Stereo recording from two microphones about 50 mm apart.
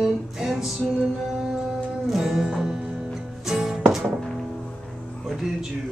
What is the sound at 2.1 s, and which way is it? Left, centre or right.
Music, centre.